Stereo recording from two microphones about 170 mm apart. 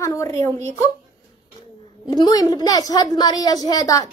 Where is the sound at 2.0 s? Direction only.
25° left (ahead or behind).